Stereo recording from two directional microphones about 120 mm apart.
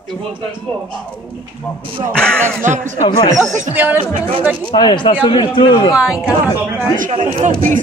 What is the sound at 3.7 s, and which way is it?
Speech, 15° right (ahead or behind).